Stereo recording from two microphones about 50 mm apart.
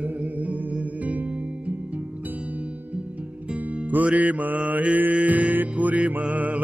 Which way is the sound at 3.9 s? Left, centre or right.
Right.